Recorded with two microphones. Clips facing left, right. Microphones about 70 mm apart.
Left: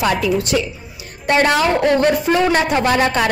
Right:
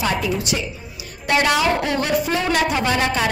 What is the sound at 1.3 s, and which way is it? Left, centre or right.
Speech, left.